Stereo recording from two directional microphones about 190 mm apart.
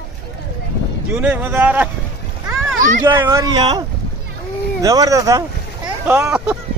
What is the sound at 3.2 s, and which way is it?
Speech, 15° right (ahead or behind).